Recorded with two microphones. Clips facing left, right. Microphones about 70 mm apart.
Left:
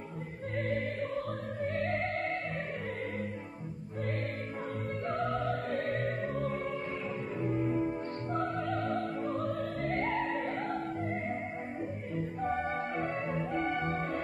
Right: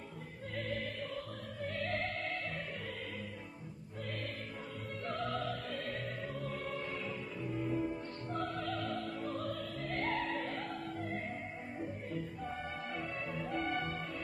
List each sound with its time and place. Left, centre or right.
0.6 s music: left
5.0 s music: left
5.7 s opera: left
7.4 s music: left
10.1 s music: left
12.4 s music: left
13.6 s music: left
13.8 s music: left